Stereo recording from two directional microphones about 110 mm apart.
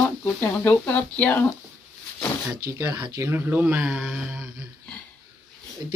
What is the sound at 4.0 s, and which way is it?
Mantra, 5° right (ahead or behind).